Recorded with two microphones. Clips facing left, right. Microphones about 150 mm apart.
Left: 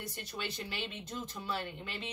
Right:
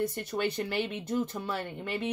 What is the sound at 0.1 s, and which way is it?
A woman's voice, 55° right (ahead or behind).